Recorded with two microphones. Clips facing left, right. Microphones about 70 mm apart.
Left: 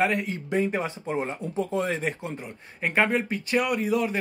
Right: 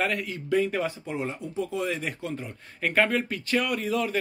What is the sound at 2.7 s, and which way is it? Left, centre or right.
Speech, left.